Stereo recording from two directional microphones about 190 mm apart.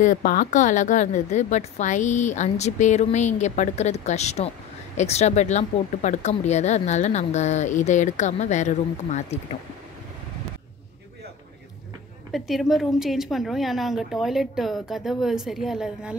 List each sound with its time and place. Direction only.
0.0 s speech: 45° left (ahead or behind)
12.3 s a woman's voice: centre (ahead or behind)